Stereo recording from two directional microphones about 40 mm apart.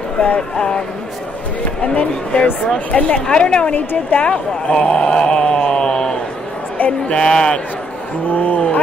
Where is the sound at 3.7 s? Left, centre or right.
Left.